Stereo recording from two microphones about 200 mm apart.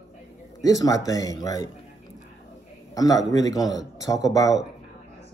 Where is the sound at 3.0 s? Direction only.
15° left (ahead or behind).